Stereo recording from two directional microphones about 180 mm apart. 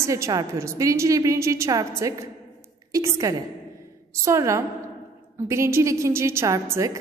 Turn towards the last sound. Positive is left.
turn(degrees=-20)  # may be behind; listen again after turning